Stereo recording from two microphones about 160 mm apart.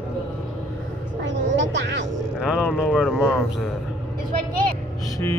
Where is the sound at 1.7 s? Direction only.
90° right.